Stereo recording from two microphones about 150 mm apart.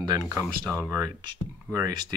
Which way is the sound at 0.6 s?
10° left (ahead or behind).